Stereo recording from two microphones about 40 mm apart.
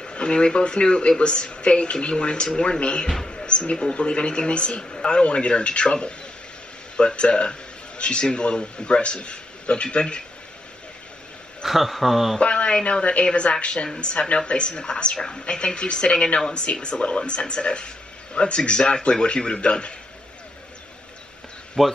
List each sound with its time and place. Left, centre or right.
0.0 s speech: left
3.3 s a sound: left
3.9 s speech: left
11.6 s speech: centre
12.4 s speech: left
21.8 s speech: centre